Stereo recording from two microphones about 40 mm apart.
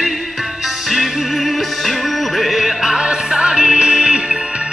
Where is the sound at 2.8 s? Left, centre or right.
Centre.